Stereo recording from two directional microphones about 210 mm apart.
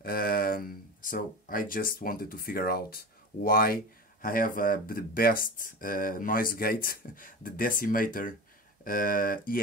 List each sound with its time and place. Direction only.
0.0 s speech: 45° left (ahead or behind)